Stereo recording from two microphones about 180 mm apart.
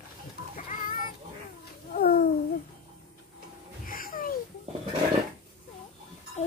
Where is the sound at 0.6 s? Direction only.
50° left (ahead or behind).